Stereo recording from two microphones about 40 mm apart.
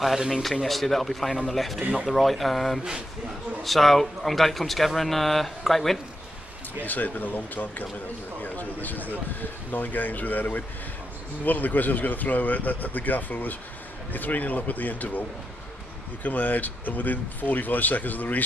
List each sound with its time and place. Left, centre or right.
0.4 s speech: centre
1.8 s speech: right
2.0 s speech: centre
6.8 s speech: left
8.4 s a sound: left
9.7 s speech: left